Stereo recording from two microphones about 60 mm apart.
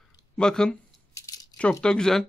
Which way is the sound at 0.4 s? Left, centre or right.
Centre.